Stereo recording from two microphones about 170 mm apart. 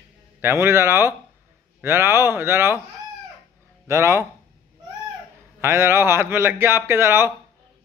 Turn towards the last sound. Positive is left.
turn(degrees=-15)  # may be behind; listen again after turning